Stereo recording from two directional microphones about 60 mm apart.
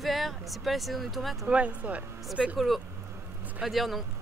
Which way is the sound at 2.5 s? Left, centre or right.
Centre.